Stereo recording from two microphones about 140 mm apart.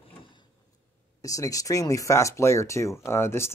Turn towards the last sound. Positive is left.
turn(degrees=20)  # may be behind; listen again after turning